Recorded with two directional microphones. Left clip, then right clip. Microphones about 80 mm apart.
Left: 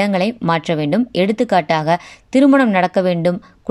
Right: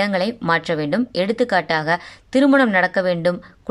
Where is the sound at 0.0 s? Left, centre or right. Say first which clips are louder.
Left 3 dB; left.